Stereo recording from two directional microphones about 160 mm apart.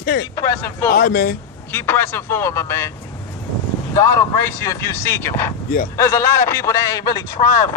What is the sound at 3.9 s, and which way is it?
A woman's voice, 20° left (ahead or behind).